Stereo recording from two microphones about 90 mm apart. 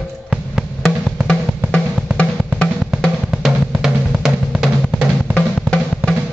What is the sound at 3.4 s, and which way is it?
Drum, 5° right (ahead or behind).